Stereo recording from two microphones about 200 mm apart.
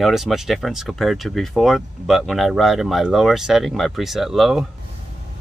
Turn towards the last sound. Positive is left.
turn(degrees=0)  # may be behind; listen again after turning